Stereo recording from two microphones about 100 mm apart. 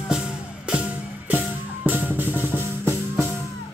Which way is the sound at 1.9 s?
20° right (ahead or behind).